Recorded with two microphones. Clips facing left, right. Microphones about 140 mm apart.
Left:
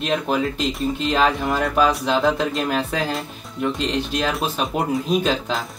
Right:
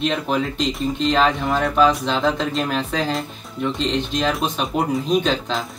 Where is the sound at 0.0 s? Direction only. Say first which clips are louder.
Even; 5° left (ahead or behind).